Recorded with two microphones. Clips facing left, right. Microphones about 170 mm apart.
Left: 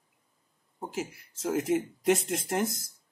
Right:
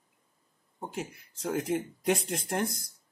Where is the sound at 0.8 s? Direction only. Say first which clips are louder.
Left 2 dB; centre (ahead or behind).